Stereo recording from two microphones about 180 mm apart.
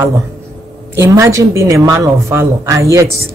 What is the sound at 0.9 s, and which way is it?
Speech, 15° right (ahead or behind).